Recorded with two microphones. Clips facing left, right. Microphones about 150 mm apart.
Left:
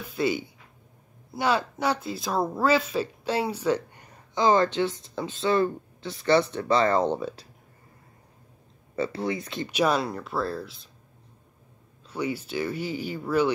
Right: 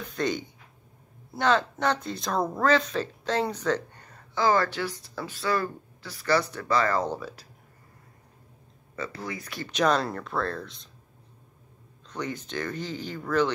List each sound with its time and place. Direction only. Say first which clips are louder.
0.0 s speech: left 2 dB; 5° left (ahead or behind); by 7.4 s 25° left (ahead or behind)
8.9 s speech: left 7 dB; 30° left (ahead or behind)
9.7 s speech: even; 10° left (ahead or behind)
12.1 s speech: left 4 dB; 10° left (ahead or behind)